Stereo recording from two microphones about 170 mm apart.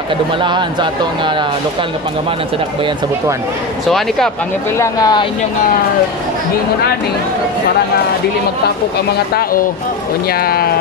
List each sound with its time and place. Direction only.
0.4 s speech: 25° right (ahead or behind)
4.7 s speech: 20° left (ahead or behind)
9.1 s speech: 60° left (ahead or behind)